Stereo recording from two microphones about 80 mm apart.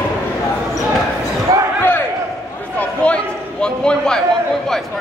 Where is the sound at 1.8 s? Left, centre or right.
Left.